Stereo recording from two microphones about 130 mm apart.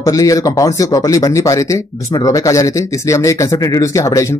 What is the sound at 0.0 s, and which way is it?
Speech, 25° left (ahead or behind).